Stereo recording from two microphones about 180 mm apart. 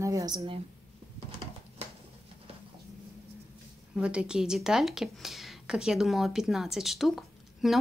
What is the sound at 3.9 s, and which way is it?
Speech, 5° right (ahead or behind).